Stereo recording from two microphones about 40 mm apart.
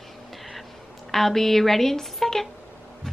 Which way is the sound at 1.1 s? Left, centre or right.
Centre.